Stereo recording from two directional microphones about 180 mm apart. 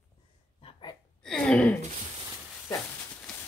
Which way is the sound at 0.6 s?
30° left (ahead or behind).